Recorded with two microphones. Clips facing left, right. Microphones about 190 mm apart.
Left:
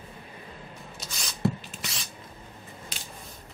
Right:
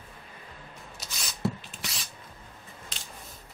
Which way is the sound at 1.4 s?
Centre (ahead or behind).